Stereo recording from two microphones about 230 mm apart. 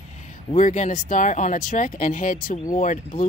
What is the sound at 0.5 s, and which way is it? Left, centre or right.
Speech, left.